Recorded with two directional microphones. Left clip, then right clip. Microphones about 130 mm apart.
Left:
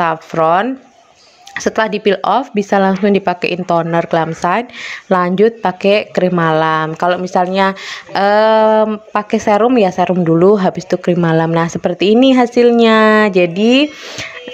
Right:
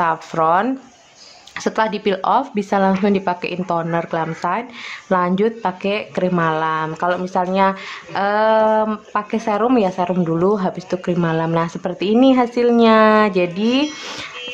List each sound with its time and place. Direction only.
0.0 s speech: 25° left (ahead or behind)